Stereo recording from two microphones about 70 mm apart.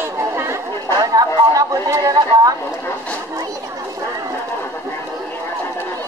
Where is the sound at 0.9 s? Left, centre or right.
Right.